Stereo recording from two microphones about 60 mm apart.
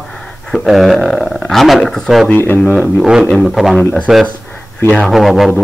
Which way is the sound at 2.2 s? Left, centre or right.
Left.